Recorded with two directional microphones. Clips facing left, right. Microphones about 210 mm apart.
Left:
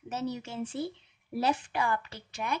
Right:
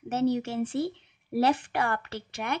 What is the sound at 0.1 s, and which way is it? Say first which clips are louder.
A woman's voice: right 9 dB; 65° right (ahead or behind).